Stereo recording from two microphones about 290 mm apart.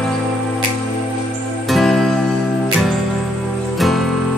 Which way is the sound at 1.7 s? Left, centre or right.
Centre.